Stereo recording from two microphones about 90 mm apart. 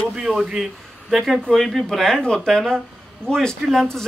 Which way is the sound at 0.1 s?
5° right (ahead or behind).